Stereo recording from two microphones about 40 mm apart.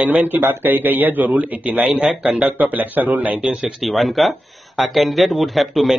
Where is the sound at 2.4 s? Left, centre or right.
Right.